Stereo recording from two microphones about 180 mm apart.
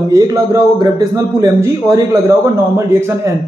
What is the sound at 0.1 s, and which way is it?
A man's voice, 20° right (ahead or behind).